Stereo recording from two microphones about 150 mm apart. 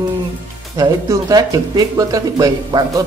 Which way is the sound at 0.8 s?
25° right (ahead or behind).